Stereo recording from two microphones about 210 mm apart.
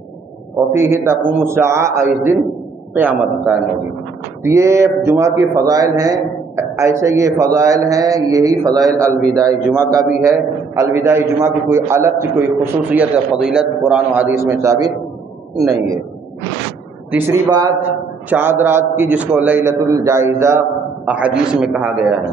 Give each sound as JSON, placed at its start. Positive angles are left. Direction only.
{"t": 0.6, "sound": "a man's voice", "side_deg": -10}
{"t": 17.1, "sound": "a man's voice", "side_deg": -15}